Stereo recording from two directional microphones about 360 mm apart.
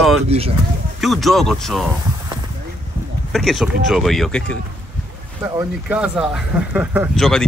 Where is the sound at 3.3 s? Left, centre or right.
Centre.